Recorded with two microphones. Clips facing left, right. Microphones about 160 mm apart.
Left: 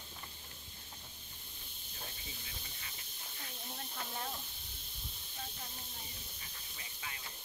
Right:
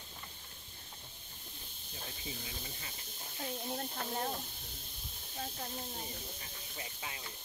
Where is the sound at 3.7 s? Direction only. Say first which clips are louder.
Right 3 dB; 45° right (ahead or behind).